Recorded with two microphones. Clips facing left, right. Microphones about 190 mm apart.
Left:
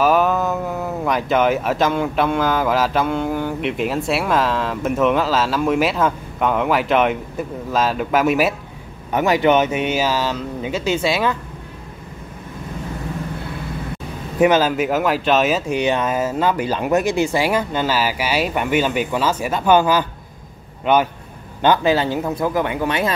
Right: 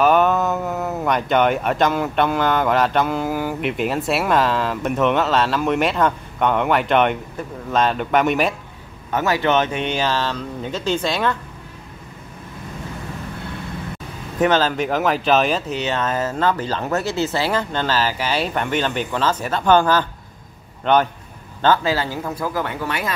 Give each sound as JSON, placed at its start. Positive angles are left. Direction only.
{"t": 0.0, "sound": "speech", "side_deg": 0}
{"t": 9.1, "sound": "speech", "side_deg": 15}
{"t": 14.4, "sound": "speech", "side_deg": 10}
{"t": 15.7, "sound": "a man's voice", "side_deg": 15}